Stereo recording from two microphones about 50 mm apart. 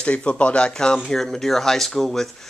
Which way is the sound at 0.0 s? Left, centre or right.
Left.